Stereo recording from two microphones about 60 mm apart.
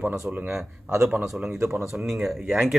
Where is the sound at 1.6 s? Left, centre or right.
Right.